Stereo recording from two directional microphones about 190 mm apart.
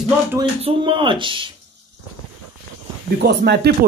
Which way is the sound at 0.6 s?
30° right (ahead or behind).